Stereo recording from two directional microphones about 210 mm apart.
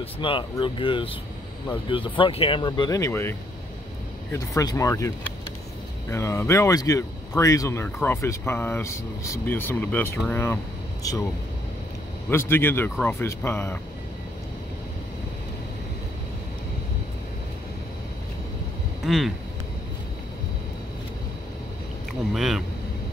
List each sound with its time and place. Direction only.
0.0 s speech: 25° left (ahead or behind)
12.3 s speech: 10° left (ahead or behind)
19.0 s speech: centre (ahead or behind)
22.3 s speech: centre (ahead or behind)